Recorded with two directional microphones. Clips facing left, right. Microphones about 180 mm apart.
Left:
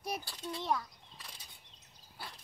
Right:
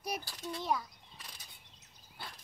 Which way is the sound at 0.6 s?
Centre (ahead or behind).